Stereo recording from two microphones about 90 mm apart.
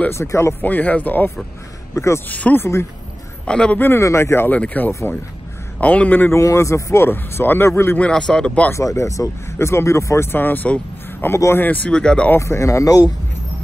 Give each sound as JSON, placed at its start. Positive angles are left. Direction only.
{"t": 0.1, "sound": "speech", "side_deg": 30}
{"t": 2.0, "sound": "speech", "side_deg": 30}
{"t": 2.2, "sound": "speech", "side_deg": 20}
{"t": 2.6, "sound": "speech", "side_deg": 30}
{"t": 3.4, "sound": "speech", "side_deg": 10}
{"t": 3.8, "sound": "speech", "side_deg": 30}
{"t": 6.4, "sound": "speech", "side_deg": 35}
{"t": 8.1, "sound": "speech", "side_deg": 10}
{"t": 8.7, "sound": "speech", "side_deg": 35}
{"t": 11.9, "sound": "speech", "side_deg": 10}
{"t": 12.3, "sound": "speech", "side_deg": 30}